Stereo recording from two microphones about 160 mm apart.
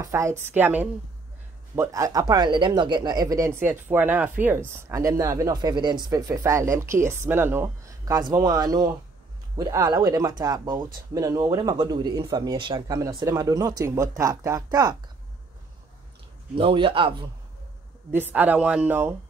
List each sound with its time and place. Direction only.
0.0 s speech: 20° right (ahead or behind)
16.5 s speech: 35° right (ahead or behind)
18.1 s speech: 10° right (ahead or behind)